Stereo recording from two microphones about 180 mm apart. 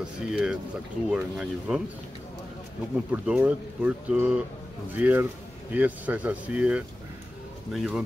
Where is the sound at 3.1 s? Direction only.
5° right (ahead or behind).